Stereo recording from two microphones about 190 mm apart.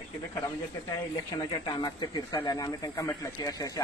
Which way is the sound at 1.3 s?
20° left (ahead or behind).